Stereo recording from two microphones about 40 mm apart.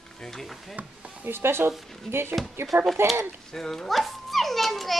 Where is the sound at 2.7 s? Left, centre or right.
Right.